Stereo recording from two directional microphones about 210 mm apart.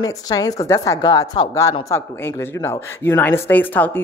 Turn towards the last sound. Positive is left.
turn(degrees=10)  # may be behind; listen again after turning